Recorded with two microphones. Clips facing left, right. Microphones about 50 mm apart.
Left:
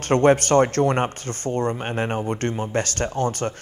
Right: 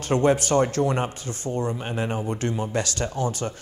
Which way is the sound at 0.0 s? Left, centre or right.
Left.